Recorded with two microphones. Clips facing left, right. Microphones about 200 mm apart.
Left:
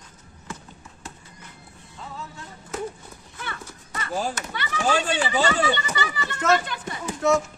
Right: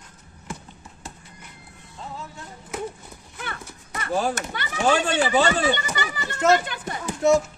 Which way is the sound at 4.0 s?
60° right (ahead or behind).